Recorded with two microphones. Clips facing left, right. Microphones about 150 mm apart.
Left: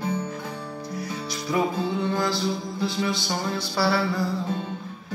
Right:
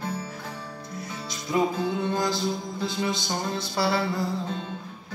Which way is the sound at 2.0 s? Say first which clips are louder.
Left 1 dB; 20° right (ahead or behind).